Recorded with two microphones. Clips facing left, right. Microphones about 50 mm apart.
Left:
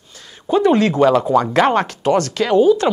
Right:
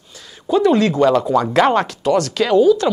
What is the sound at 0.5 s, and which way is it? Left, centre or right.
Speech, centre.